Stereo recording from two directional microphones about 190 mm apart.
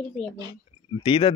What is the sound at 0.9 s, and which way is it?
Speech, 25° left (ahead or behind).